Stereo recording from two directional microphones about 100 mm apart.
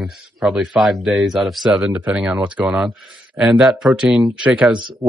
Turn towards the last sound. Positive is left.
turn(degrees=-10)  # may be behind; listen again after turning